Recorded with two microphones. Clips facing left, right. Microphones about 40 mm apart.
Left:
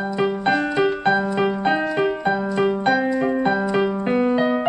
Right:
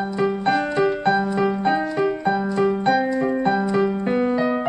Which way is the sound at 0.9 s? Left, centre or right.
Left.